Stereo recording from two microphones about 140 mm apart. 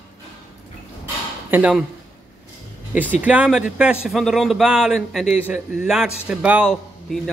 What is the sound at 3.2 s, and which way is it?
A man's voice, 10° right (ahead or behind).